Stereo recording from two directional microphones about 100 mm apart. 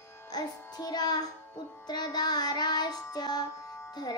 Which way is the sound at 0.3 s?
45° left (ahead or behind).